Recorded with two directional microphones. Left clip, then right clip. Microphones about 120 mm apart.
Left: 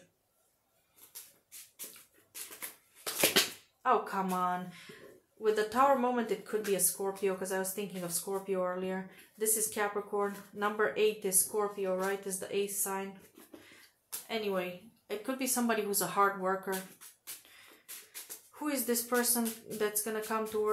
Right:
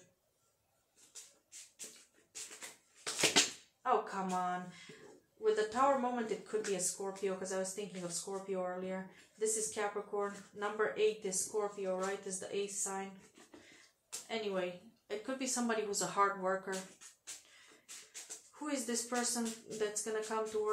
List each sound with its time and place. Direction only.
3.8 s speech: 40° left (ahead or behind)
5.4 s speech: 50° left (ahead or behind)
14.2 s speech: 35° left (ahead or behind)
15.2 s speech: 40° left (ahead or behind)
18.5 s speech: 40° left (ahead or behind)